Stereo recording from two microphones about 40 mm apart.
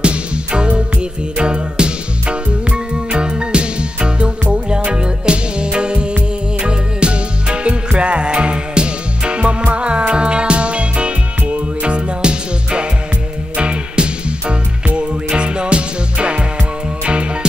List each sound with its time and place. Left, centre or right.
0.0 s music: right